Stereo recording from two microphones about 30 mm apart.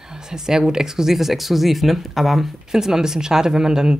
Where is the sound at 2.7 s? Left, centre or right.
Centre.